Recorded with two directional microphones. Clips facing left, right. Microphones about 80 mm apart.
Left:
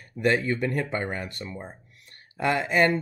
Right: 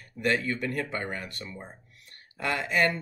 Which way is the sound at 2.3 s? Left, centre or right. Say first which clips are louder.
Left 4 dB; left.